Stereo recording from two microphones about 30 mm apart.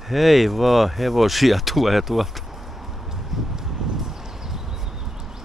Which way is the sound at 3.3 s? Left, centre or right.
Centre.